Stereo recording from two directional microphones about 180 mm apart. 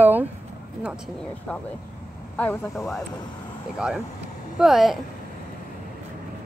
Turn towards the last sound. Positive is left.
turn(degrees=0)  # may be behind; listen again after turning